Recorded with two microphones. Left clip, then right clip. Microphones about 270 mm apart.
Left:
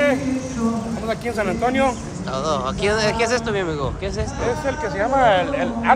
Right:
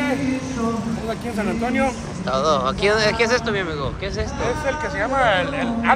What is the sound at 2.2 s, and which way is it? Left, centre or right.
Speech, centre.